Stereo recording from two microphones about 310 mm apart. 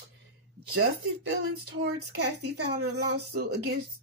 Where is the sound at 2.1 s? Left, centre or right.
Right.